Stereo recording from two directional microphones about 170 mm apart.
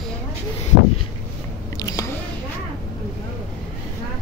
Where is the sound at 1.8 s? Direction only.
20° left (ahead or behind).